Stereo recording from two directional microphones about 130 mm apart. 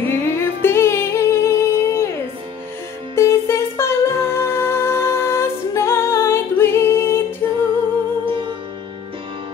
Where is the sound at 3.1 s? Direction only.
20° left (ahead or behind).